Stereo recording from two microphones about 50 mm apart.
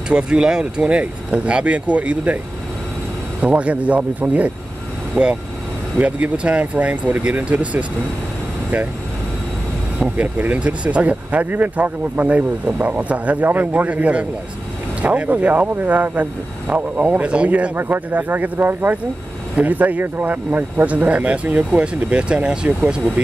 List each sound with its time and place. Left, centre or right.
0.1 s speech: centre
3.3 s speech: right
5.9 s speech: right
10.1 s speech: right
10.6 s speech: right
17.7 s speech: right; by 23.2 s centre